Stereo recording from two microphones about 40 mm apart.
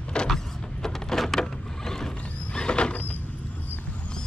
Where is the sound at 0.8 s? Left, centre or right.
Centre; by 3.0 s left.